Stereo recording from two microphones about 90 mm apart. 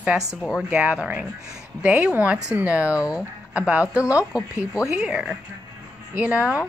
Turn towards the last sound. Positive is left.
turn(degrees=-15)  # may be behind; listen again after turning